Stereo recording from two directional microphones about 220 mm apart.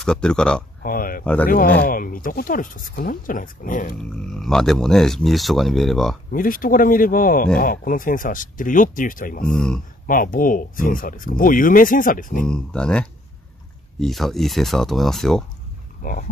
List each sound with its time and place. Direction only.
0.0 s speech: 5° left (ahead or behind)
0.8 s speech: 40° left (ahead or behind)
1.2 s speech: 5° left (ahead or behind)
1.5 s speech: 40° left (ahead or behind)
4.0 s speech: centre (ahead or behind)
6.3 s speech: 40° left (ahead or behind)
9.5 s speech: centre (ahead or behind)
10.0 s speech: 40° left (ahead or behind)
12.4 s speech: 5° left (ahead or behind)
16.0 s speech: 40° left (ahead or behind)